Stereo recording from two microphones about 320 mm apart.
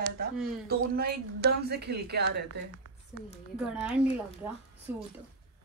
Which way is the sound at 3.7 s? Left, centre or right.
Centre.